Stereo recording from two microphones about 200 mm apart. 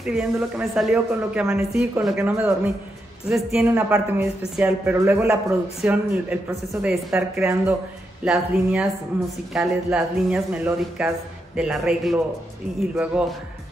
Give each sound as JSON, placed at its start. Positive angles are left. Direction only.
{"t": 0.0, "sound": "speech", "side_deg": -5}